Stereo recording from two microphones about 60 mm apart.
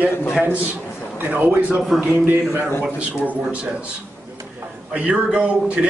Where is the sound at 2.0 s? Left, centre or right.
Right.